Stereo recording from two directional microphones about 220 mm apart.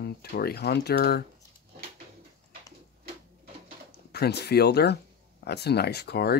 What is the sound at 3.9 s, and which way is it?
Speech, 45° left (ahead or behind).